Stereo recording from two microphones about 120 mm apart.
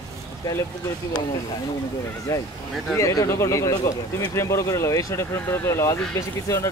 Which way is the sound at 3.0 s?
25° left (ahead or behind).